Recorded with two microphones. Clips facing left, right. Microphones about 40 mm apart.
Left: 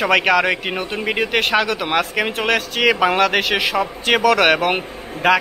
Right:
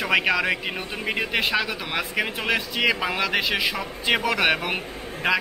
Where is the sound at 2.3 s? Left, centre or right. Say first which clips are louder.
Left 5 dB; left.